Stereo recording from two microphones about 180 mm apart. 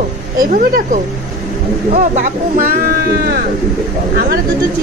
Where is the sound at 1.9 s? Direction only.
45° right (ahead or behind).